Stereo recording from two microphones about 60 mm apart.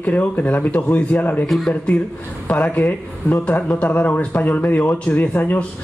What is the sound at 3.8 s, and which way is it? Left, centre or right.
A man's voice, left.